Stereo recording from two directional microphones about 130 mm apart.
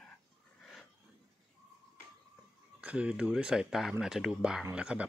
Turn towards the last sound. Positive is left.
turn(degrees=-10)  # may be behind; listen again after turning